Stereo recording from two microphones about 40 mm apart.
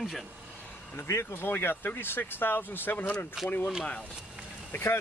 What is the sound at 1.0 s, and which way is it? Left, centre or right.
Speech, left.